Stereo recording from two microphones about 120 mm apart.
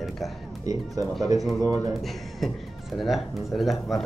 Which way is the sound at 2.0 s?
Centre (ahead or behind).